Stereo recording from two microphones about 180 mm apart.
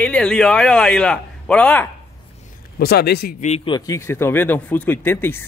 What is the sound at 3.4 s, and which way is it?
Speech, 35° left (ahead or behind).